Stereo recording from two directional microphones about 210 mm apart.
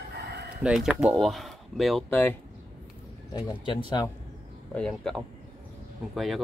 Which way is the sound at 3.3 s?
20° left (ahead or behind).